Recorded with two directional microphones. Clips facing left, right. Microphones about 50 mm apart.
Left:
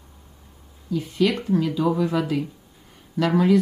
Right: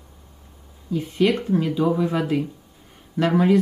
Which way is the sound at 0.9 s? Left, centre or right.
Right.